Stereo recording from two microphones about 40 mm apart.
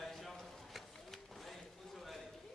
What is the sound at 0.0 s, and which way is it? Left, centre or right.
Run, centre.